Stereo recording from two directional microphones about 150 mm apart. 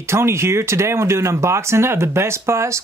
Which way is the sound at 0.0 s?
15° right (ahead or behind).